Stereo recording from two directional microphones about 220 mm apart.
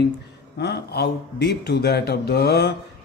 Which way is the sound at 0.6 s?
50° left (ahead or behind).